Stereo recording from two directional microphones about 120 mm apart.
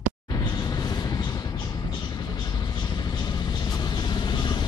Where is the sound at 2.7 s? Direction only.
35° left (ahead or behind).